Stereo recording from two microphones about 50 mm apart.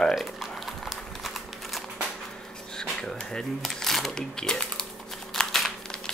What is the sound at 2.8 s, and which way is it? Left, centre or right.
Speech, centre.